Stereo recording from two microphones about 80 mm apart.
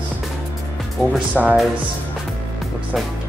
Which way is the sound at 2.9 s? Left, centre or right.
Centre.